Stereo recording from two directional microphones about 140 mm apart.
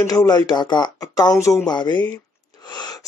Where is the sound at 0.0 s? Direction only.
25° left (ahead or behind).